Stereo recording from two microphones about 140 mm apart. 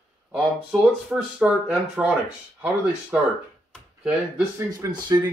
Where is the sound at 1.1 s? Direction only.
5° right (ahead or behind).